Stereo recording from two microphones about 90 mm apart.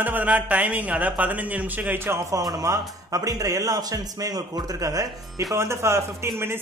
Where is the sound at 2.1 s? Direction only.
35° right (ahead or behind).